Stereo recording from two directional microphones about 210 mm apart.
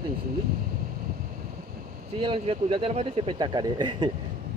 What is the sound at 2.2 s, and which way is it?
Speech, 25° right (ahead or behind).